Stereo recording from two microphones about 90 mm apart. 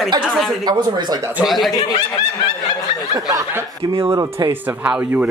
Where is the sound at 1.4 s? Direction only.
Centre (ahead or behind).